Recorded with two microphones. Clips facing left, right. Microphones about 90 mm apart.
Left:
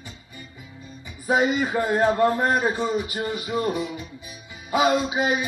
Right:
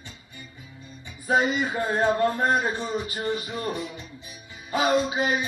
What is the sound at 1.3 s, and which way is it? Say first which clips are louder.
Speech: left 2 dB; 20° left (ahead or behind).